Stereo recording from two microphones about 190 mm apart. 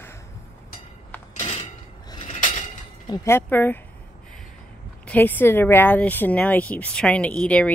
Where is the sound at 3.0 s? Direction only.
20° left (ahead or behind).